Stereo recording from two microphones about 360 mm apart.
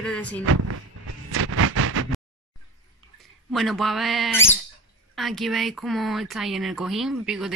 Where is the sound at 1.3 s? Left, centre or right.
Right.